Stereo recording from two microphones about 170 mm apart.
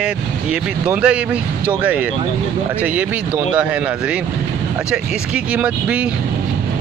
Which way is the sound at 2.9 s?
10° right (ahead or behind).